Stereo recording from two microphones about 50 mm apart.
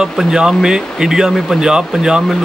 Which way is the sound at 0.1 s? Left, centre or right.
Centre.